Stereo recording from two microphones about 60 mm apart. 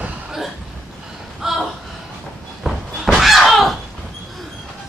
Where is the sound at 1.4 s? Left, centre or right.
Centre.